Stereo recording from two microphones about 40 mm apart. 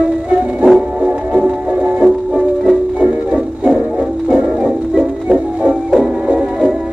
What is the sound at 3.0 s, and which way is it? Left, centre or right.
Music, right.